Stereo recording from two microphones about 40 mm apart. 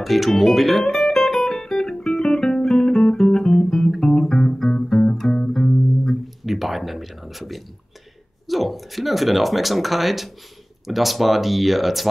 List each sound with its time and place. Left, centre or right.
0.0 s speech: centre
0.8 s music: centre
2.6 s guitar: centre
4.0 s music: centre
6.2 s a sound: centre
8.5 s speech: centre